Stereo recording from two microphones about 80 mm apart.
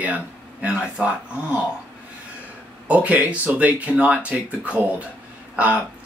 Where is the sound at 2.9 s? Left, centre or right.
Centre.